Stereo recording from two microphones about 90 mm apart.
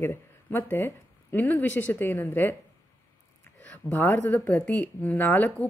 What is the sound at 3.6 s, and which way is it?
A woman's voice, 20° left (ahead or behind).